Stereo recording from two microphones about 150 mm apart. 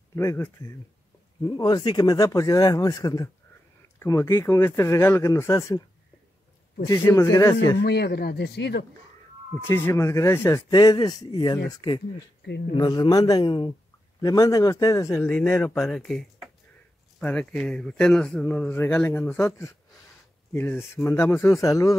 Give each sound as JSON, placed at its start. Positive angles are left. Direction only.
{"t": 0.1, "sound": "a man's voice", "side_deg": 15}
{"t": 1.6, "sound": "a man's voice", "side_deg": 30}
{"t": 6.9, "sound": "speech", "side_deg": 20}
{"t": 7.8, "sound": "speech", "side_deg": 90}
{"t": 9.6, "sound": "a man's voice", "side_deg": 15}
{"t": 10.7, "sound": "a man's voice", "side_deg": 30}